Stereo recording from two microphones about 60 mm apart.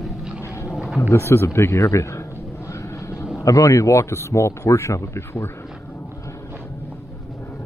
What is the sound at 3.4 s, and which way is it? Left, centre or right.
Speech, left.